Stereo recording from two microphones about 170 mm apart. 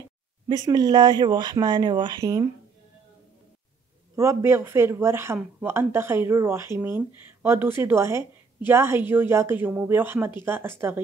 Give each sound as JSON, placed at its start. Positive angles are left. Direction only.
{"t": 0.5, "sound": "speech", "side_deg": -25}
{"t": 4.1, "sound": "speech", "side_deg": -15}